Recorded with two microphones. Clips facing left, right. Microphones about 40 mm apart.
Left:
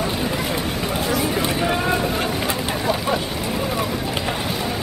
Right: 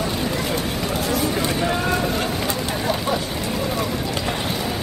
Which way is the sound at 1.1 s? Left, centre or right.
Centre.